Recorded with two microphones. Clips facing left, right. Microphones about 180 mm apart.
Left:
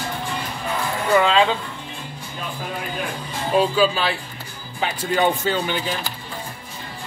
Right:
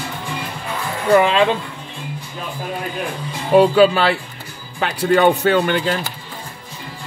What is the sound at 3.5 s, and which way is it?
Speech, 60° right (ahead or behind).